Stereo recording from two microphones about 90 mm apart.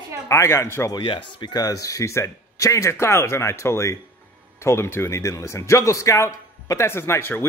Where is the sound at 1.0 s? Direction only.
70° left (ahead or behind).